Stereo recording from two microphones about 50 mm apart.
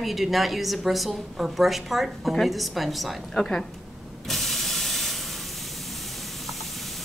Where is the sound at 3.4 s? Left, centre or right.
Centre.